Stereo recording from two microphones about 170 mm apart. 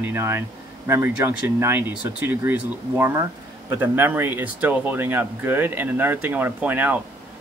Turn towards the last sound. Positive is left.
turn(degrees=-10)  # may be behind; listen again after turning